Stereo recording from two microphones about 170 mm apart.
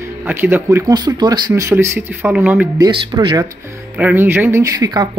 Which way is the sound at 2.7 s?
30° right (ahead or behind).